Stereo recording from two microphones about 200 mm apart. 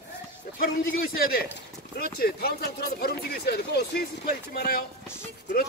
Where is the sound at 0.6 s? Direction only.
45° left (ahead or behind).